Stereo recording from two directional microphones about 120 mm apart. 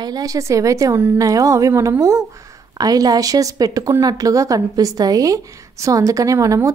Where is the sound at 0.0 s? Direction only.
30° right (ahead or behind).